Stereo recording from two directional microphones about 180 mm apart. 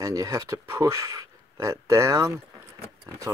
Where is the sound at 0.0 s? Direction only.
20° right (ahead or behind).